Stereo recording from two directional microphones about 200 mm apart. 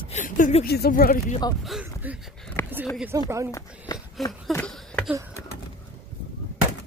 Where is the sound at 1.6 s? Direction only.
5° right (ahead or behind).